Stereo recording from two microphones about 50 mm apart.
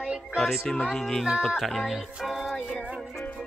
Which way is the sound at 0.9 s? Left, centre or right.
Centre.